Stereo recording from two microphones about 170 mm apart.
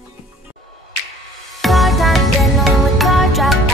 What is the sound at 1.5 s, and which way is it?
Music, centre (ahead or behind).